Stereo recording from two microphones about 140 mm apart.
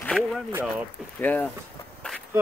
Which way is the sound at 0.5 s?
15° right (ahead or behind).